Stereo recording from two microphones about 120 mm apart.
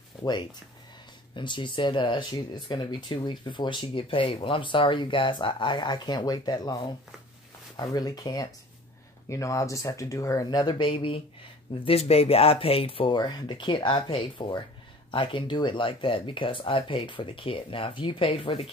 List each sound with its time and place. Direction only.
0.2 s speech: 40° left (ahead or behind)